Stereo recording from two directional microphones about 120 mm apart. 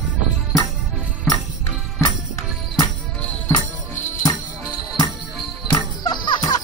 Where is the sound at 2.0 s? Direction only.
30° left (ahead or behind).